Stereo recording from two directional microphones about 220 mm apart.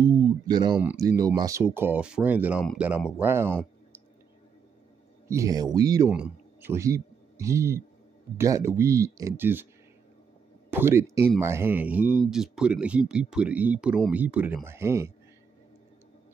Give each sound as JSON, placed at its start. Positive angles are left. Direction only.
{"t": 0.0, "sound": "speech", "side_deg": -15}
{"t": 0.7, "sound": "speech", "side_deg": -5}
{"t": 1.0, "sound": "a man's voice", "side_deg": -15}
{"t": 5.3, "sound": "a man's voice", "side_deg": -15}
{"t": 10.7, "sound": "a man's voice", "side_deg": -10}